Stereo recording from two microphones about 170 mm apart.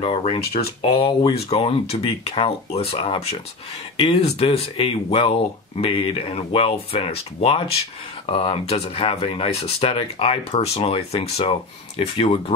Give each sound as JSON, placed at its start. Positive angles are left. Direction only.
{"t": 0.0, "sound": "speech", "side_deg": 35}
{"t": 0.5, "sound": "speech", "side_deg": 65}
{"t": 1.0, "sound": "speech", "side_deg": 35}